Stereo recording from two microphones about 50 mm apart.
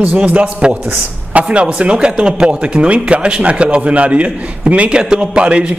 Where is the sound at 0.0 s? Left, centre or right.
Right.